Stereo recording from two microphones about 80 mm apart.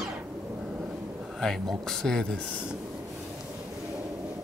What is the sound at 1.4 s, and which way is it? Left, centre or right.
Speech, centre.